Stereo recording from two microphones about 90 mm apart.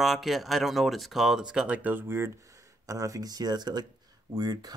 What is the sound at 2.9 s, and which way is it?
Speech, 40° right (ahead or behind).